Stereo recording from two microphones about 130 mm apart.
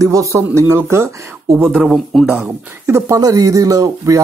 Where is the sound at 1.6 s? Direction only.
10° right (ahead or behind).